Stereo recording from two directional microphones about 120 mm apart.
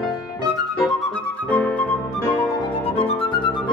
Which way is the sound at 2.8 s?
55° left (ahead or behind).